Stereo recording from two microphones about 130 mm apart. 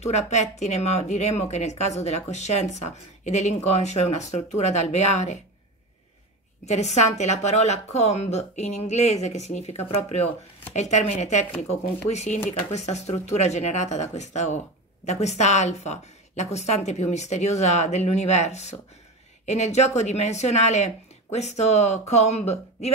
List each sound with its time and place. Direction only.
0.0 s speech: 60° left (ahead or behind)
6.6 s speech: 60° left (ahead or behind)